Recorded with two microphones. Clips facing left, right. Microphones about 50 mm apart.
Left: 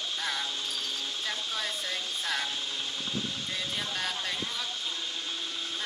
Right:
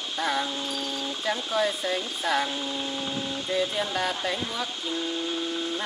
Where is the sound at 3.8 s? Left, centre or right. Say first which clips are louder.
Right 6 dB; centre.